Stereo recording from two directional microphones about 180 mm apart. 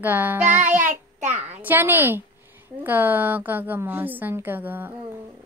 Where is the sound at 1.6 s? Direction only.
10° right (ahead or behind).